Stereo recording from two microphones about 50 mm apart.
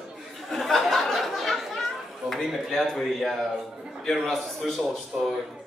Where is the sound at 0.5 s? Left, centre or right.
Centre.